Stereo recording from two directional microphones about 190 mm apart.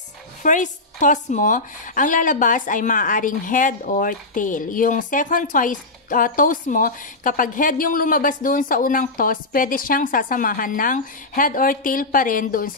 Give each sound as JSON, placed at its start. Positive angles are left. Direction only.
{"t": 0.4, "sound": "a woman's voice", "side_deg": 40}